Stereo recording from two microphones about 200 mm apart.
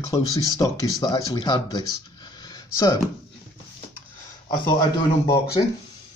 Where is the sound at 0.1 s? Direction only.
15° left (ahead or behind).